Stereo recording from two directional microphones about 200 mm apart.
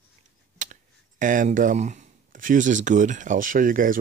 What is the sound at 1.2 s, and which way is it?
Speech, 40° right (ahead or behind).